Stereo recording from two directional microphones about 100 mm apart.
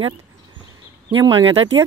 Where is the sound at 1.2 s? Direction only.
55° right (ahead or behind).